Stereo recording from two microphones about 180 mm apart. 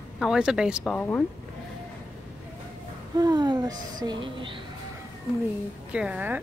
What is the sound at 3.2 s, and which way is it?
Speech, 20° right (ahead or behind).